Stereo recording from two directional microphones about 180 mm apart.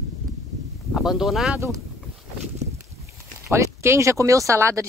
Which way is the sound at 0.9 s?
Centre (ahead or behind).